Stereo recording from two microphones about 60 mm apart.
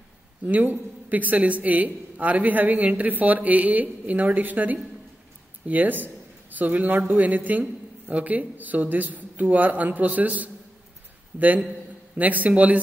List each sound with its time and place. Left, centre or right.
0.5 s a man's voice: right